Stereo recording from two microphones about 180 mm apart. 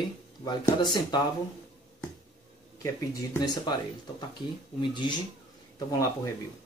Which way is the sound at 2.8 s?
20° left (ahead or behind).